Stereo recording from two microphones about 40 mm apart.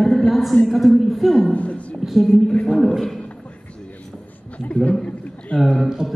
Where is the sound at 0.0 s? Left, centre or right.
Centre.